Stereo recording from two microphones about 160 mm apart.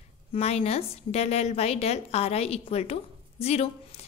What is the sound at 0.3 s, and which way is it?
A woman's voice, 40° left (ahead or behind).